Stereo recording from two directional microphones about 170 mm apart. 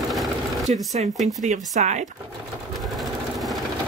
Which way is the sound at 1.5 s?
45° right (ahead or behind).